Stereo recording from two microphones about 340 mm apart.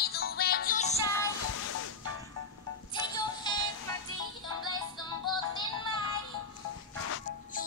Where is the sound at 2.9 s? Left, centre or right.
Centre.